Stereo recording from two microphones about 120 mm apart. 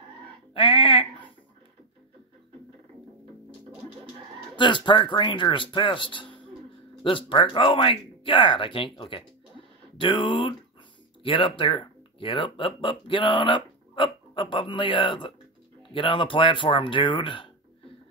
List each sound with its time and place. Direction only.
0.6 s speech: 45° left (ahead or behind)
4.6 s speech: 40° left (ahead or behind)